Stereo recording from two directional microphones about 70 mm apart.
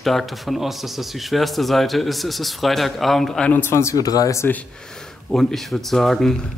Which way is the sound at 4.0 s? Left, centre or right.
Left.